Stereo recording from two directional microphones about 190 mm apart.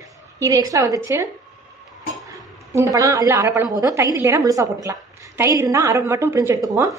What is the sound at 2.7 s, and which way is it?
Speech, 15° right (ahead or behind).